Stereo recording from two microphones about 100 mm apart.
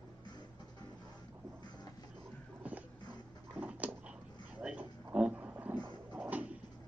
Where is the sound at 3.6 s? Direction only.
15° right (ahead or behind).